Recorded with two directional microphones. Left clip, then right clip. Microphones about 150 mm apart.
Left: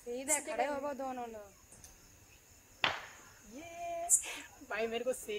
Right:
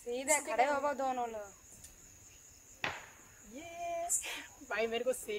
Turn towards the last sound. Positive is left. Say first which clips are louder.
# right 2 dB
turn(degrees=-10)  # may be behind; listen again after turning